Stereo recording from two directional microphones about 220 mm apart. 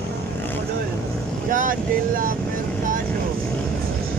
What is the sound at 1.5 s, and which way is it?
Speech, 35° right (ahead or behind).